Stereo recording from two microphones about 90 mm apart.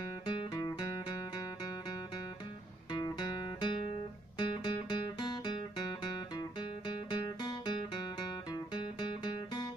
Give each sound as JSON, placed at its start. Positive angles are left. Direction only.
{"t": 0.3, "sound": "music", "side_deg": 60}
{"t": 2.9, "sound": "guitar", "side_deg": 55}
{"t": 4.4, "sound": "music", "side_deg": 55}
{"t": 7.1, "sound": "guitar", "side_deg": 60}
{"t": 8.7, "sound": "music", "side_deg": 60}